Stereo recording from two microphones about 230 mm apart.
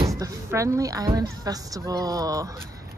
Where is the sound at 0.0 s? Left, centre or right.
Centre.